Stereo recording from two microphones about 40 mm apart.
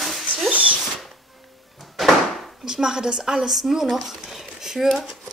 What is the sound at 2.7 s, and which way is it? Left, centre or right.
Speech, centre.